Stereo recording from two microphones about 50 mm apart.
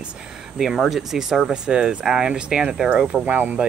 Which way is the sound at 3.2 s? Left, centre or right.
Right.